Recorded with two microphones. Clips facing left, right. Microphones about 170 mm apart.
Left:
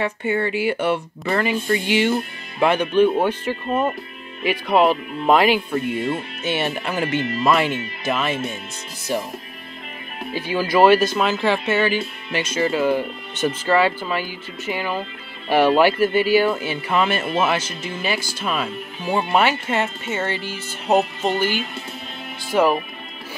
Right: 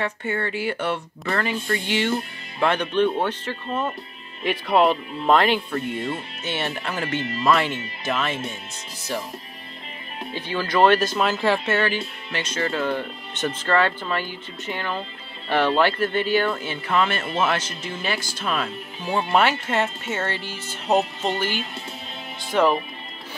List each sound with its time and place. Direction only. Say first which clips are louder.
0.0 s speech: left 4 dB; 10° left (ahead or behind)
4.4 s speech: left 2 dB; 5° left (ahead or behind)
10.3 s speech: left 4 dB; 10° left (ahead or behind)